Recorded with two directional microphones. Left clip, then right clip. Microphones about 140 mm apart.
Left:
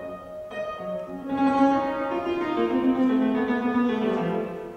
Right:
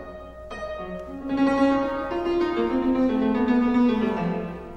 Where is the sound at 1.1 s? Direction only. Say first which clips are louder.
Right 1 dB; 30° right (ahead or behind).